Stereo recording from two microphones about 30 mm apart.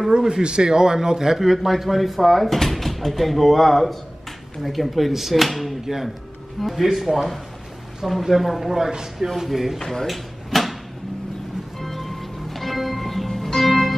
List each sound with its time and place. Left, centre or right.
0.4 s a man's voice: right
1.4 s speech: centre
9.8 s speech: centre
10.0 s drawer open or close: centre
11.8 s music: centre